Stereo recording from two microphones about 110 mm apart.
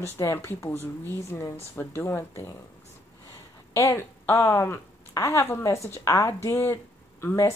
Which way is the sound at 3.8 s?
25° left (ahead or behind).